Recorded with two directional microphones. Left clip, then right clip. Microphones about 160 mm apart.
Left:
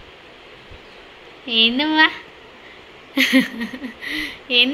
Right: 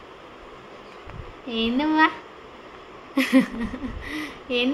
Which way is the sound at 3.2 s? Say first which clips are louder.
Left 4 dB; 5° right (ahead or behind).